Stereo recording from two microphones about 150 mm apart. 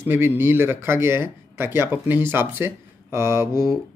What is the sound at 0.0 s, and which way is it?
Speech, 15° right (ahead or behind).